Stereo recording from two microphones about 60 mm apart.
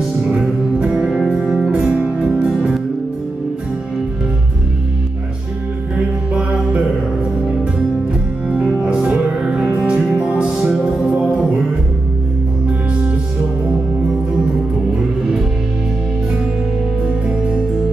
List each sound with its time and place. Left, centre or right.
0.0 s music: centre
1.4 s music: centre
1.7 s music: centre
5.9 s mantra: centre
8.5 s music: centre